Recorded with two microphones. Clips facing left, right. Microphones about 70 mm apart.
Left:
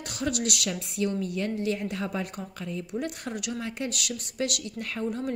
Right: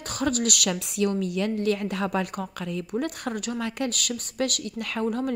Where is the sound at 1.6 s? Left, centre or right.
Right.